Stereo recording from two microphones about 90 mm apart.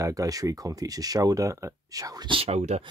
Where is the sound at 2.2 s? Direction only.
80° right.